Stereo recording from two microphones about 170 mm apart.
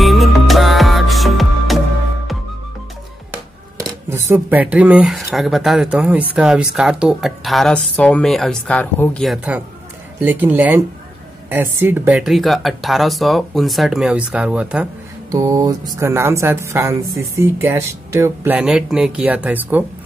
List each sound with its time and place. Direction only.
0.0 s music: centre (ahead or behind)
3.7 s a woman's voice: 15° right (ahead or behind)
15.3 s mantra: 20° right (ahead or behind)
16.0 s a woman's voice: 15° right (ahead or behind)